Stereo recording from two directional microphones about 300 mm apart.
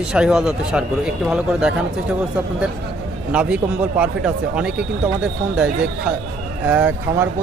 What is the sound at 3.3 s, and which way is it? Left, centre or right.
Speech, centre.